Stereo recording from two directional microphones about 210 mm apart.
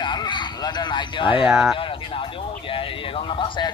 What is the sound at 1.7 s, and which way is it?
Speech, 25° left (ahead or behind).